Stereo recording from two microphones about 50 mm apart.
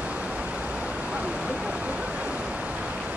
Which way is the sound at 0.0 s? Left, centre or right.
Right.